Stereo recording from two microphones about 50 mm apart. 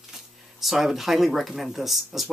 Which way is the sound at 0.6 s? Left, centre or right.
Centre.